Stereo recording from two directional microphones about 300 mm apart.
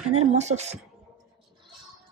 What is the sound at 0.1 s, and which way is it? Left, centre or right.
Speech, right.